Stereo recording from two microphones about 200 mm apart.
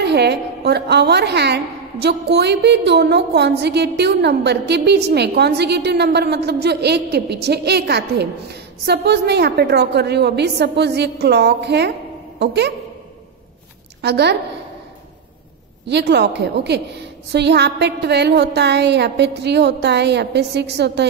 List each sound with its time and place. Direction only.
0.0 s a woman's voice: 55° right (ahead or behind)
14.0 s a woman's voice: 55° right (ahead or behind)
15.9 s a woman's voice: 55° right (ahead or behind)